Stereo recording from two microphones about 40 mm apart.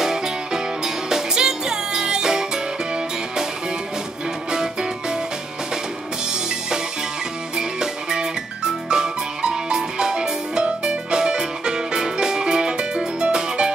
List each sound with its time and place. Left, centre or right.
0.0 s music: centre
7.5 s music: centre